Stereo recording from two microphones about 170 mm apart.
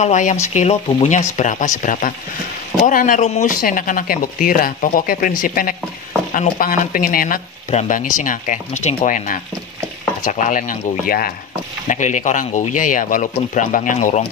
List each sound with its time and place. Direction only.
0.0 s speech: 45° left (ahead or behind)
11.9 s speech: 45° left (ahead or behind)